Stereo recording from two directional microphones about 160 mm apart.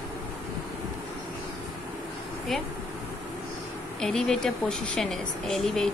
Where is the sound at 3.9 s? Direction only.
5° left (ahead or behind).